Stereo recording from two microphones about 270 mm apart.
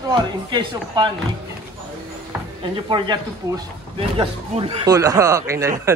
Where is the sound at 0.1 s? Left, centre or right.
Centre.